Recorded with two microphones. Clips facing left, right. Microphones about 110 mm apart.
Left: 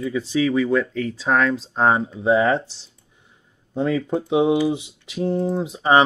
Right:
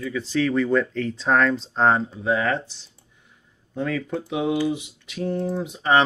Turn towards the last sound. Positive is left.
turn(degrees=25)  # may be behind; listen again after turning